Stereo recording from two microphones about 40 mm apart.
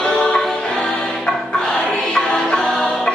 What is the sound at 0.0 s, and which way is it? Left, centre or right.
Music, left.